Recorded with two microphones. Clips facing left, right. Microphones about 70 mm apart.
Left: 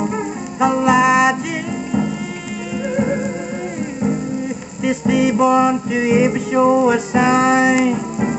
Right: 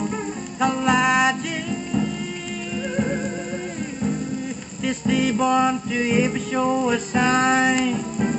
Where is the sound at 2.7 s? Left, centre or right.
Left.